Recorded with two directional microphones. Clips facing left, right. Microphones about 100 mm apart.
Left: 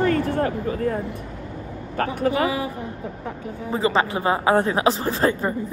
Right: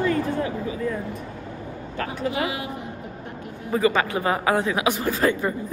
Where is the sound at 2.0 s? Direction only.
45° left (ahead or behind).